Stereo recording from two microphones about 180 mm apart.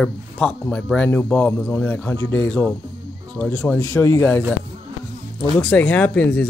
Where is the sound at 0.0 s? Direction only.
5° left (ahead or behind).